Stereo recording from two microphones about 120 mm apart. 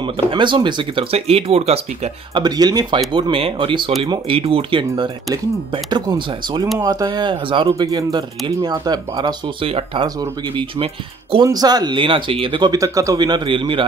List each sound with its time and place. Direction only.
0.3 s speech: 40° right (ahead or behind)
1.1 s speech: 55° right (ahead or behind)
2.3 s speech: 35° right (ahead or behind)
9.7 s speech: 50° right (ahead or behind)
11.4 s speech: 35° right (ahead or behind)
12.7 s speech: 30° right (ahead or behind); by 13.8 s 45° right (ahead or behind)